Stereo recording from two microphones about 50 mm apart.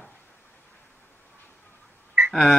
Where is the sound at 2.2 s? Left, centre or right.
Centre.